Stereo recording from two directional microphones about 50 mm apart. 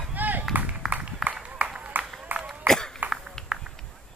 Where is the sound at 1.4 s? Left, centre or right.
Right.